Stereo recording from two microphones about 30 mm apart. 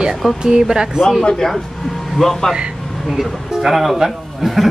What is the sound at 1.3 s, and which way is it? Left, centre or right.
Speech, centre.